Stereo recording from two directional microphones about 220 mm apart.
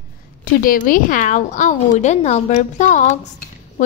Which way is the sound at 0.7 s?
35° left (ahead or behind).